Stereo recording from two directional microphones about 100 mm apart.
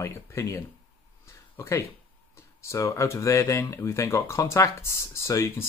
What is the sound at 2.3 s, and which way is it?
Speech, 30° left (ahead or behind).